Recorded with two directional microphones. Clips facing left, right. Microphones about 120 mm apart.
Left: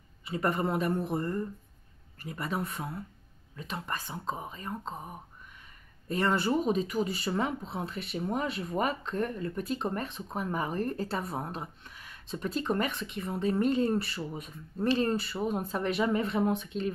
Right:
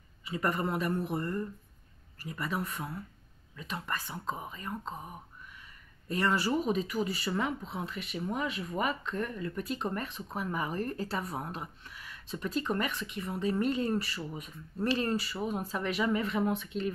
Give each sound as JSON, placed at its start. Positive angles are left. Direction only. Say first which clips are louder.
{"t": 0.2, "sound": "a man's voice", "louder": "left 2 dB", "side_deg": 30}
{"t": 15.5, "sound": "speech", "louder": "left 2 dB", "side_deg": 35}